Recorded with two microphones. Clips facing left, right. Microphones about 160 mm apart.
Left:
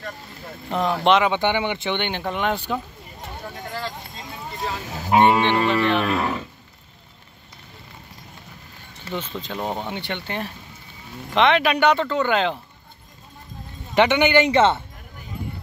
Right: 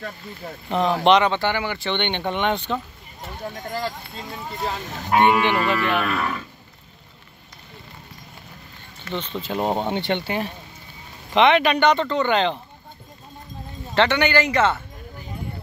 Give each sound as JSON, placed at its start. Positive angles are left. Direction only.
{"t": 0.7, "sound": "speech", "side_deg": 0}
{"t": 1.3, "sound": "livestock", "side_deg": 20}
{"t": 2.0, "sound": "speech", "side_deg": 5}
{"t": 4.8, "sound": "speech", "side_deg": 5}
{"t": 5.1, "sound": "livestock", "side_deg": 30}
{"t": 9.1, "sound": "speech", "side_deg": 10}
{"t": 9.6, "sound": "speech", "side_deg": -25}
{"t": 10.2, "sound": "speech", "side_deg": -5}
{"t": 13.9, "sound": "livestock", "side_deg": 15}